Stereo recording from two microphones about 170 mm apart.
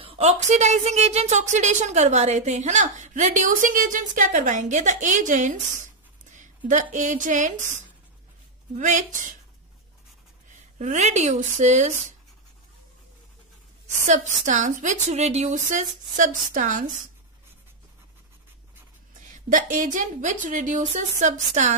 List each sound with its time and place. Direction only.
0.0 s a woman's voice: 35° right (ahead or behind)
10.8 s a woman's voice: 45° right (ahead or behind)
14.0 s a woman's voice: 45° right (ahead or behind)
19.1 s a woman's voice: 50° right (ahead or behind)